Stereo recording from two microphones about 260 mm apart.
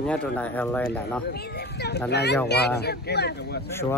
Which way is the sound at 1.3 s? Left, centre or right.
Left.